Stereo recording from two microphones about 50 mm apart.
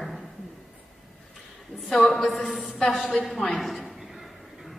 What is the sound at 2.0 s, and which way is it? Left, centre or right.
A man's voice, centre.